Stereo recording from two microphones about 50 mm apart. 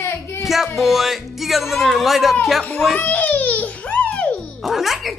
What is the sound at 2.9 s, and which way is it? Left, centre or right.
Babbling, left.